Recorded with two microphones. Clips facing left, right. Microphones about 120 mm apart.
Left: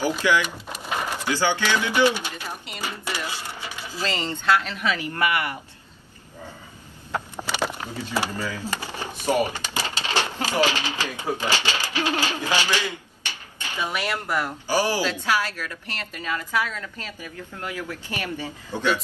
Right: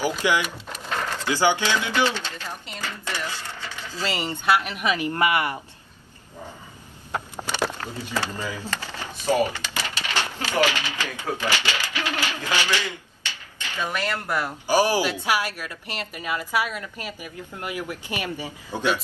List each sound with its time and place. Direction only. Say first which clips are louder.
0.0 s a woman's voice: left 1 dB; 15° right (ahead or behind)
0.5 s a sound: left 1 dB; 15° left (ahead or behind)
1.3 s a woman's voice: right 2 dB; 15° right (ahead or behind)
1.9 s speech: left 3 dB; 15° left (ahead or behind)
4.0 s a woman's voice: even; 15° right (ahead or behind)
7.5 s a sound: right 1 dB; 15° left (ahead or behind)
8.3 s a woman's voice: left 1 dB; 15° right (ahead or behind)
8.6 s speech: left 2 dB; 15° left (ahead or behind)
11.5 s typewriter: left 1 dB; 35° left (ahead or behind)
12.4 s a man's voice: left 1 dB; 15° left (ahead or behind)
14.2 s a woman's voice: even; 10° right (ahead or behind)